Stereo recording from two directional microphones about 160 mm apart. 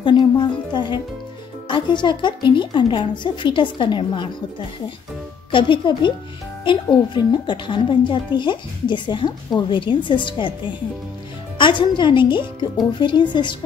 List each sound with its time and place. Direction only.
0.0 s a woman's voice: 30° left (ahead or behind)